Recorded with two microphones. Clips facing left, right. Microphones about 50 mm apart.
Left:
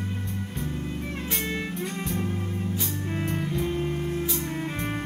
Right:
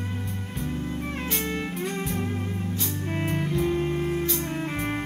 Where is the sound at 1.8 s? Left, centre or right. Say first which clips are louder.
Right 1 dB; centre.